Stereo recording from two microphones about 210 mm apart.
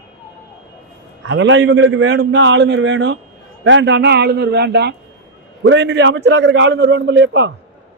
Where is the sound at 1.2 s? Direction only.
60° right (ahead or behind).